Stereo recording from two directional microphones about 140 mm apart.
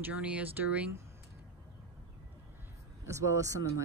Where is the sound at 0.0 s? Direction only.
10° right (ahead or behind).